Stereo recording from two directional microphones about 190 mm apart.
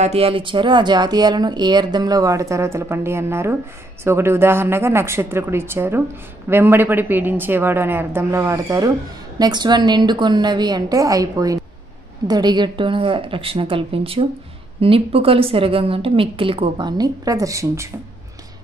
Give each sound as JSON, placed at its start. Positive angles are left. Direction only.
{"t": 0.0, "sound": "speech", "side_deg": -30}